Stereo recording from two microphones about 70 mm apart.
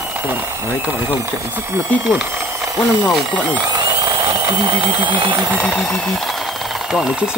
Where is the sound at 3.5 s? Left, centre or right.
Right.